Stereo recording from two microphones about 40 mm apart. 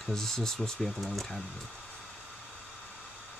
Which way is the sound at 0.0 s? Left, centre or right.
Centre.